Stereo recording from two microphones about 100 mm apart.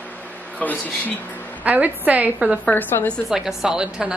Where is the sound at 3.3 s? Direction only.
5° right (ahead or behind).